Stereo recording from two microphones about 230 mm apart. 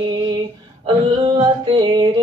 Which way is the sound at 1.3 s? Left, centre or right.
Right.